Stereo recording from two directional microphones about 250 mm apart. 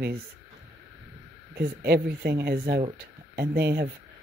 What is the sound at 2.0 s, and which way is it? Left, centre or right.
Speech, right.